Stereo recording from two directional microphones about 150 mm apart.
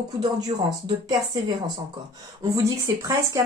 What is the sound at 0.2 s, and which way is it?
Speech, 25° right (ahead or behind).